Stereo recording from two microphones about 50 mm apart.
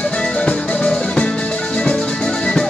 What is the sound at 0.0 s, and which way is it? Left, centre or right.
Music, centre.